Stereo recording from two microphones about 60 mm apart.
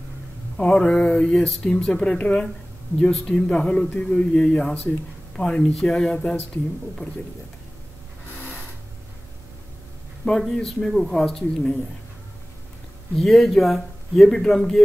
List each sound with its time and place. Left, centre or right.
0.6 s speech: centre
10.5 s speech: centre
13.1 s speech: centre